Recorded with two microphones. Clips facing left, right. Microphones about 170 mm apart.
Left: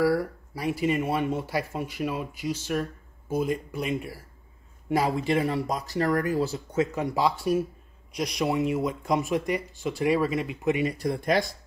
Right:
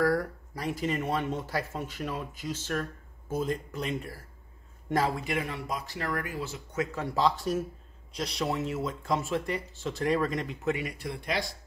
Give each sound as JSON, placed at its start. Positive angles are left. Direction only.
{"t": 0.0, "sound": "speech", "side_deg": 10}
{"t": 5.1, "sound": "speech", "side_deg": 30}
{"t": 10.7, "sound": "speech", "side_deg": 25}
{"t": 11.0, "sound": "speech", "side_deg": 45}